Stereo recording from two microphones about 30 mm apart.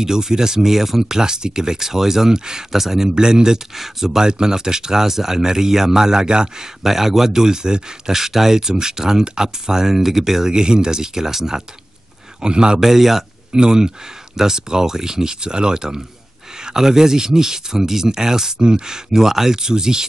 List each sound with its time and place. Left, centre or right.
0.0 s speech: centre
2.7 s speech: centre
3.2 s speech: right
3.7 s speech: centre
4.2 s speech: right
6.2 s speech: right
6.8 s speech: centre
8.2 s speech: centre
10.5 s speech: right
12.4 s speech: right
12.8 s speech: centre
13.6 s speech: right
18.6 s speech: right
19.1 s speech: centre